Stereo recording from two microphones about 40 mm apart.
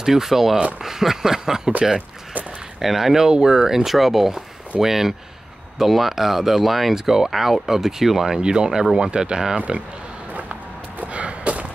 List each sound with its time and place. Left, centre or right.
0.0 s speech: centre
2.8 s speech: centre
8.4 s speech: right
9.6 s speech: right
11.1 s a sound: right